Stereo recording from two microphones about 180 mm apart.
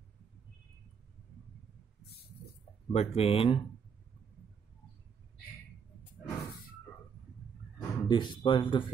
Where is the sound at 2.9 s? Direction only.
35° left (ahead or behind).